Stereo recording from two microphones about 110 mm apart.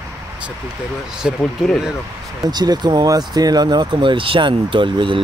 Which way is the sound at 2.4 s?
40° right (ahead or behind).